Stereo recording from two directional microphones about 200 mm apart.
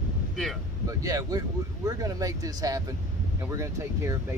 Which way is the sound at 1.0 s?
15° right (ahead or behind).